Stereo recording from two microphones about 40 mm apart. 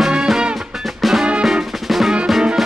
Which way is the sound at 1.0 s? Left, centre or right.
Centre.